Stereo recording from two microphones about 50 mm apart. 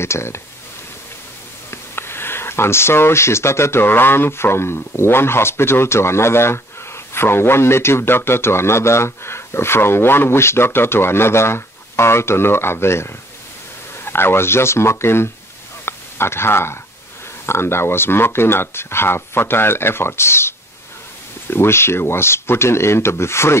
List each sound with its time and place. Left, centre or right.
0.0 s a man's voice: left
1.7 s a man's voice: left
15.8 s a sound: left
17.5 s a man's voice: left